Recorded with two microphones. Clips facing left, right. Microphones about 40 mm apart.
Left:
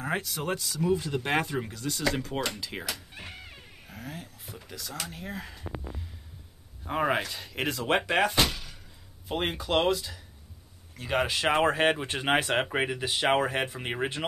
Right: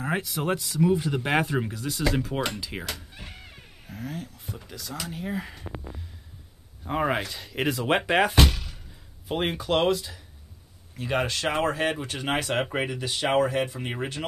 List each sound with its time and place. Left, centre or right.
0.0 s speech: centre
6.8 s speech: centre
8.4 s a sound: right
9.3 s speech: centre
11.4 s speech: left
12.7 s speech: centre; by 13.7 s left
13.7 s speech: centre